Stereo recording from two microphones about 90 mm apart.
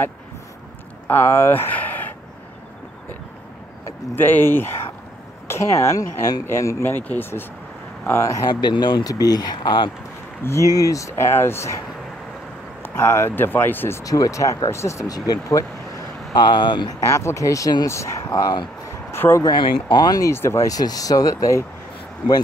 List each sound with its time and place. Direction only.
1.0 s speech: 25° left (ahead or behind)
4.1 s speech: 20° left (ahead or behind)
8.5 s speech: 55° left (ahead or behind)
9.0 s speech: 45° left (ahead or behind); by 9.8 s 60° left (ahead or behind)
10.4 s speech: 35° left (ahead or behind)
12.8 s speech: 25° left (ahead or behind)
14.0 s speech: 40° left (ahead or behind)
16.4 s speech: 55° left (ahead or behind)
17.0 s speech: 35° left (ahead or behind)
18.2 s speech: 50° left (ahead or behind)
19.1 s speech: 25° left (ahead or behind)
19.4 s speech: 50° left (ahead or behind)
20.2 s speech: 30° left (ahead or behind)